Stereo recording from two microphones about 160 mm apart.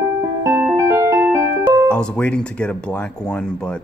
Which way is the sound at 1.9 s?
5° left (ahead or behind).